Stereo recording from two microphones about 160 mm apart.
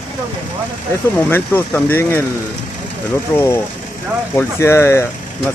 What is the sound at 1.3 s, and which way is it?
Speech, 15° left (ahead or behind).